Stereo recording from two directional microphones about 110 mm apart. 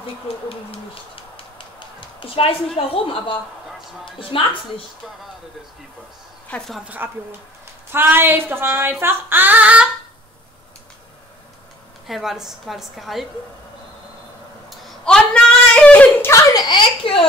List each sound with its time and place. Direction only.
0.0 s a child's voice: 55° left (ahead or behind)
6.7 s female singing: 10° right (ahead or behind)
7.9 s speech: 20° right (ahead or behind)
9.0 s female singing: 20° right (ahead or behind)
12.1 s a woman's voice: 5° right (ahead or behind)
14.7 s a sound: 10° left (ahead or behind)
16.5 s a child's voice: 45° left (ahead or behind)